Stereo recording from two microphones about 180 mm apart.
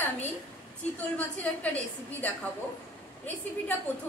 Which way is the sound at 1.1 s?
10° left (ahead or behind).